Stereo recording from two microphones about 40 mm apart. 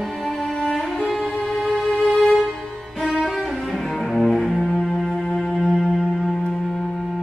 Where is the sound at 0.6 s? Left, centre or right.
Centre.